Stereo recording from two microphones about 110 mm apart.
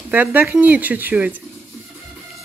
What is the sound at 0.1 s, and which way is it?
Speech, 15° right (ahead or behind).